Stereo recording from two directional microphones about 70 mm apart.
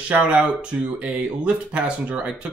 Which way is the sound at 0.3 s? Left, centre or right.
Centre.